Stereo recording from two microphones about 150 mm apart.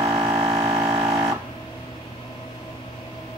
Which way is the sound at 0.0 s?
25° right (ahead or behind).